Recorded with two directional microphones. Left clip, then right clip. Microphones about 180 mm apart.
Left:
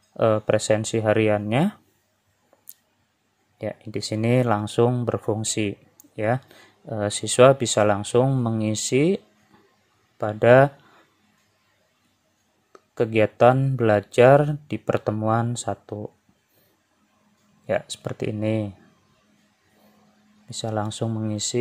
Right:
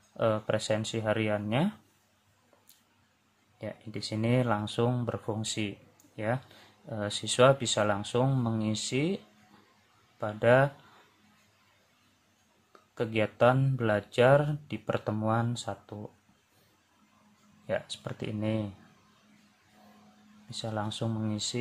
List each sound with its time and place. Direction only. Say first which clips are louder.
0.2 s speech: left 8 dB; 30° left (ahead or behind)
3.5 s speech: left 10 dB; 35° left (ahead or behind)
12.9 s speech: left 10 dB; 30° left (ahead or behind)
17.6 s speech: left 8 dB; 30° left (ahead or behind)
20.4 s speech: left 7 dB; 30° left (ahead or behind)